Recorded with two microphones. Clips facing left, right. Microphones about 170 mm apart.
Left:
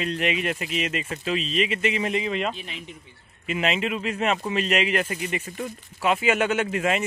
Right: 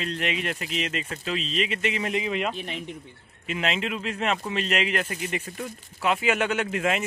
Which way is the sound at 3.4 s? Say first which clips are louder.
Left 3 dB; 5° left (ahead or behind).